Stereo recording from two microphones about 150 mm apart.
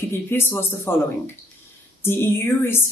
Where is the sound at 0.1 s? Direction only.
15° left (ahead or behind).